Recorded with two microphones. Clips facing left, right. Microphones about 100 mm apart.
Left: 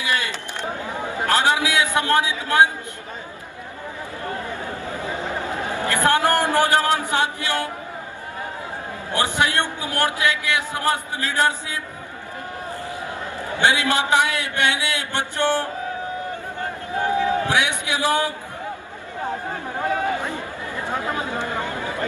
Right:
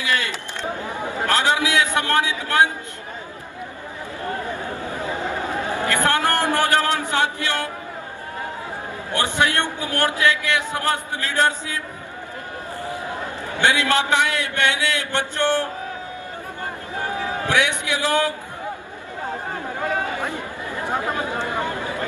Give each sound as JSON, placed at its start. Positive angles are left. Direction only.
{"t": 0.0, "sound": "a sound", "side_deg": 20}
{"t": 2.0, "sound": "a man's voice", "side_deg": 15}
{"t": 5.6, "sound": "a man's voice", "side_deg": 20}
{"t": 9.2, "sound": "a man's voice", "side_deg": 15}
{"t": 13.7, "sound": "a man's voice", "side_deg": 15}
{"t": 17.0, "sound": "a man's voice", "side_deg": 20}
{"t": 20.2, "sound": "chatter", "side_deg": -15}